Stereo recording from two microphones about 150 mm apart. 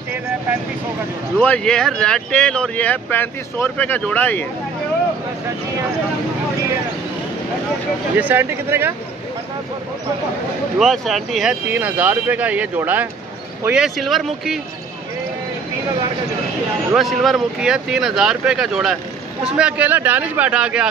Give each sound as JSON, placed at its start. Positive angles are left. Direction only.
{"t": 1.4, "sound": "speech", "side_deg": 5}
{"t": 8.2, "sound": "speech", "side_deg": -15}
{"t": 10.8, "sound": "speech", "side_deg": 0}
{"t": 16.9, "sound": "speech", "side_deg": 0}